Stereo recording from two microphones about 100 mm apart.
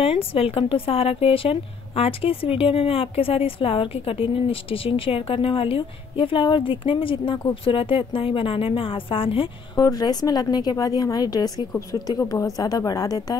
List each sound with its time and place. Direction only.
0.0 s speech: 70° left (ahead or behind)
9.8 s a woman's voice: 40° left (ahead or behind)